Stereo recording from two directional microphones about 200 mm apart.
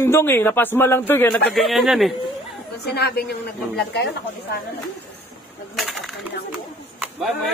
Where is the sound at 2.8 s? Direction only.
55° left (ahead or behind).